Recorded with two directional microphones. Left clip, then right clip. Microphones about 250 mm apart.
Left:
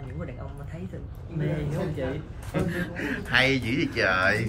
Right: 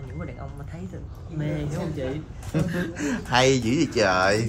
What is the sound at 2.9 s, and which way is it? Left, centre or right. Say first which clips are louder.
Speech: right 1 dB; centre.